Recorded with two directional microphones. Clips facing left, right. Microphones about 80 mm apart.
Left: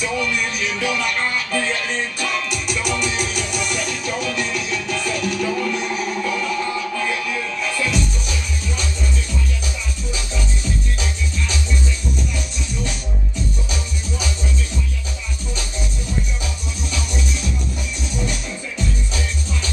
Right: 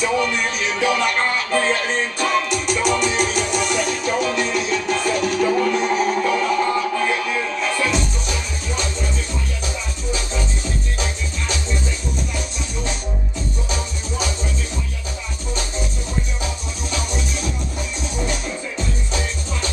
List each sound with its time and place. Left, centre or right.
0.0 s music: right
13.7 s music: right
18.1 s music: right